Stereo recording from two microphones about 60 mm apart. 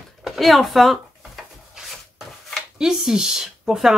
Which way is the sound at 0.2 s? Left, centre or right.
Centre.